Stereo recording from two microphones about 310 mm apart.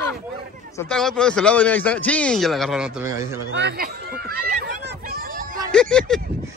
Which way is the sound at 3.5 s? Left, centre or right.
Right.